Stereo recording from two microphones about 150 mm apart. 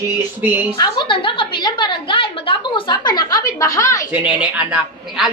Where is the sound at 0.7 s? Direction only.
30° left (ahead or behind).